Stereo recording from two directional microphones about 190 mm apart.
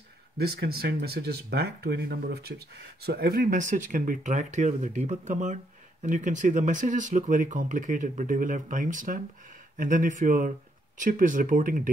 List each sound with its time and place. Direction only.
0.4 s speech: 55° right (ahead or behind)